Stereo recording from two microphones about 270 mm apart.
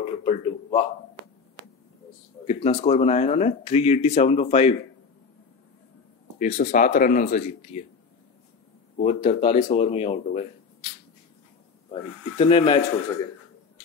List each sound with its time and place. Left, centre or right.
0.2 s a sound: left
2.4 s speech: left
6.3 s speech: left
8.9 s speech: left
11.9 s speech: left